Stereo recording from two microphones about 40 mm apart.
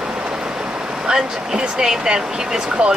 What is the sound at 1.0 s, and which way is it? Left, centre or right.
Speech, centre.